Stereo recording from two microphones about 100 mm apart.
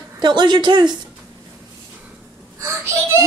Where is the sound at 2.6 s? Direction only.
30° right (ahead or behind).